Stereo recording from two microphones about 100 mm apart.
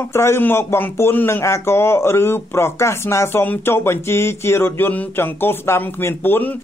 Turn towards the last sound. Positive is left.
turn(degrees=20)  # may be behind; listen again after turning